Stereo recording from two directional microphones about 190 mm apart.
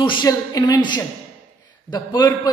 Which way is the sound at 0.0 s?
25° left (ahead or behind).